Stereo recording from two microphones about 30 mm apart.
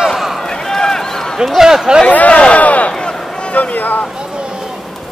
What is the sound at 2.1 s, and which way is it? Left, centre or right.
Speech, left.